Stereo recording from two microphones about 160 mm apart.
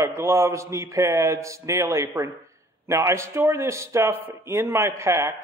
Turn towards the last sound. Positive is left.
turn(degrees=-15)  # may be behind; listen again after turning